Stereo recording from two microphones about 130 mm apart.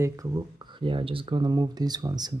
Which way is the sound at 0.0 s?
25° right (ahead or behind).